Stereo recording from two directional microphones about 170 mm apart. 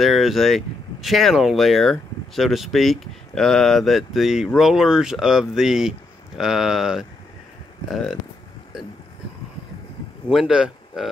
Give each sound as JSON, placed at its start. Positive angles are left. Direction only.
{"t": 0.0, "sound": "speech", "side_deg": 0}
{"t": 10.3, "sound": "speech", "side_deg": -5}